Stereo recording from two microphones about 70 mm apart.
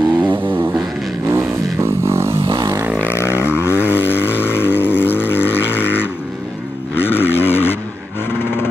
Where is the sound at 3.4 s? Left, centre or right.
Left.